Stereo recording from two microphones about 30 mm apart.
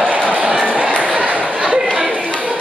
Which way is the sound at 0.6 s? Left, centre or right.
Right.